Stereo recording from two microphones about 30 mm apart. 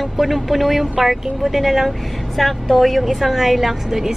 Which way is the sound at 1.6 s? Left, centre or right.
Centre.